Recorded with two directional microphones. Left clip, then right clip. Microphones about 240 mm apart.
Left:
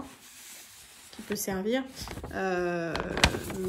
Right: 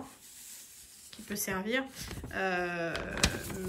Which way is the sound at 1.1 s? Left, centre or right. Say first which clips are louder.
Left 3 dB; centre.